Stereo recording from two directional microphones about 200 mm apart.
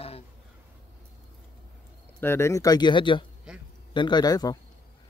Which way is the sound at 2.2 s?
15° left (ahead or behind).